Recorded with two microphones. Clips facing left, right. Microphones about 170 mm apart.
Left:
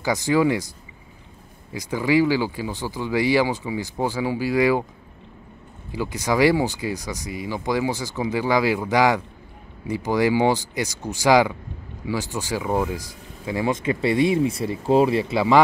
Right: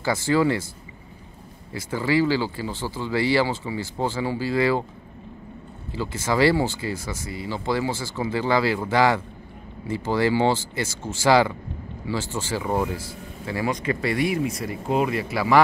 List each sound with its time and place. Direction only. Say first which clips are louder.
0.0 s speech: left 1 dB; 15° left (ahead or behind)
1.7 s speech: left 3 dB; 15° left (ahead or behind)
5.9 s speech: left 2 dB; 15° left (ahead or behind)